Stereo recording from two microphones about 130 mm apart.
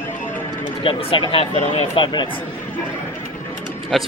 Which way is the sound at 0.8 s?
40° left (ahead or behind).